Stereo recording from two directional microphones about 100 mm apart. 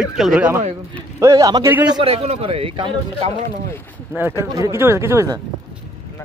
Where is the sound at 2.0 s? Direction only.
80° right; by 3.3 s 65° right (ahead or behind).